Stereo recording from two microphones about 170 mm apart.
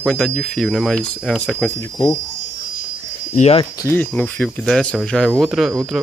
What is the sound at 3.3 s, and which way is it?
Speech, 40° left (ahead or behind).